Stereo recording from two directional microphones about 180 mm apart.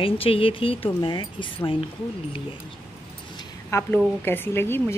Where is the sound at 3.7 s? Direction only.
15° left (ahead or behind).